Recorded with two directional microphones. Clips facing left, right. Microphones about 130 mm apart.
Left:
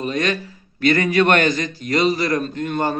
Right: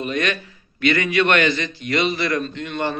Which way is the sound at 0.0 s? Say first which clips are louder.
Left 2 dB; 35° left (ahead or behind).